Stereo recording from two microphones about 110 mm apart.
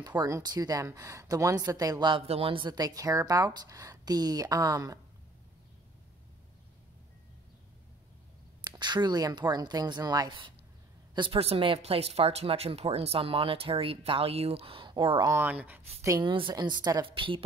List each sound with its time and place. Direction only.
0.0 s speech: 35° right (ahead or behind)
2.2 s speech: 60° right (ahead or behind); by 4.9 s 35° right (ahead or behind)
8.6 s speech: 40° right (ahead or behind)
11.3 s speech: 60° right (ahead or behind)
15.3 s speech: 15° right (ahead or behind)
16.2 s a woman's voice: 45° right (ahead or behind)
17.0 s a woman's voice: 50° right (ahead or behind)